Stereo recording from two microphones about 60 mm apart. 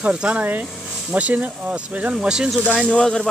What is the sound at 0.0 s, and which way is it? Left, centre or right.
Speech, centre.